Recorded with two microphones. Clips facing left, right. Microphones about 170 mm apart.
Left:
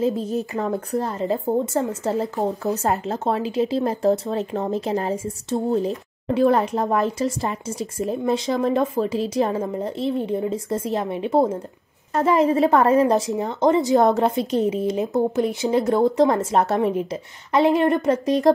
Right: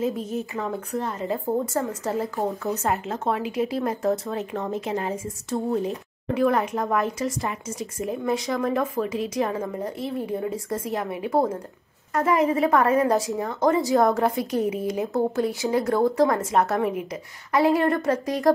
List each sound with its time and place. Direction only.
0.0 s a woman's voice: 30° left (ahead or behind)
1.7 s speech: 25° left (ahead or behind)